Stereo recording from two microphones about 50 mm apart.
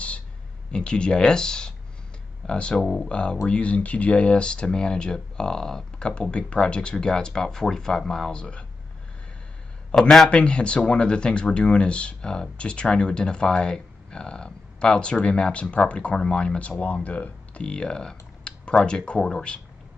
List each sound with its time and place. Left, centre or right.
0.7 s speech: centre
2.8 s speech: centre
3.1 s speech: left
8.3 s speech: left
9.9 s speech: centre
10.3 s speech: left